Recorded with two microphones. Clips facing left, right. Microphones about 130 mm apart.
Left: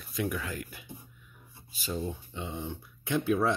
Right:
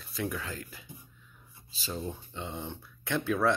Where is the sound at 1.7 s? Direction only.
30° right (ahead or behind).